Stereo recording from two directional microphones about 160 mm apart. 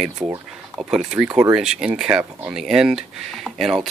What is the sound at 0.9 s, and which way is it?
Speech, 5° right (ahead or behind).